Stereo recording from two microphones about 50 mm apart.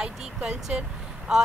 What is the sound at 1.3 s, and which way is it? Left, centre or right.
Speech, centre.